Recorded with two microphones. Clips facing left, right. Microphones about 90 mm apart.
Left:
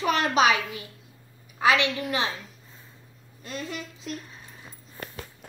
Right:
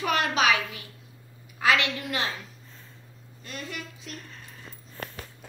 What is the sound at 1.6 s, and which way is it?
Speech, 20° left (ahead or behind).